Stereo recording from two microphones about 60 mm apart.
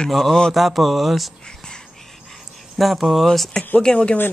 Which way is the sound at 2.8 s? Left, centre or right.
Centre.